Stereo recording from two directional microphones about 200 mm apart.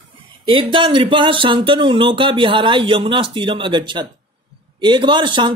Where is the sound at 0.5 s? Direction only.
25° right (ahead or behind).